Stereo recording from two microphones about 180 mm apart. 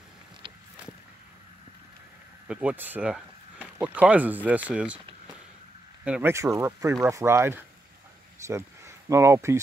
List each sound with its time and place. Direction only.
2.4 s speech: 5° right (ahead or behind)
6.0 s speech: 10° right (ahead or behind)